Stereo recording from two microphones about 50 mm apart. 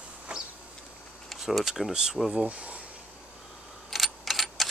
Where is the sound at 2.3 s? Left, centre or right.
Right.